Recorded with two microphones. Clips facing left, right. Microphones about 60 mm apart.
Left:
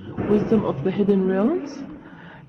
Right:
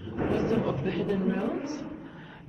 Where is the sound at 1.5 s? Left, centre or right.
Left.